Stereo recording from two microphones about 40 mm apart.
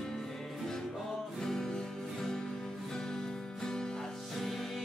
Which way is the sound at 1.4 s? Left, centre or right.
Centre.